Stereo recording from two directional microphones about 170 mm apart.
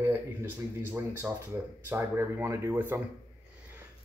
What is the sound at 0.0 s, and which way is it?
Speech, 15° right (ahead or behind).